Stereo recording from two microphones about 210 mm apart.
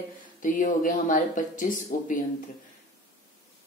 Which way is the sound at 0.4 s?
40° left (ahead or behind).